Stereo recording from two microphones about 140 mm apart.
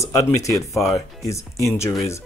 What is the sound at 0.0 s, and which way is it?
Speech, 25° left (ahead or behind).